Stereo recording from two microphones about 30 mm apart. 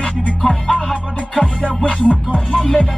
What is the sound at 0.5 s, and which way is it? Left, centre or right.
Music, left.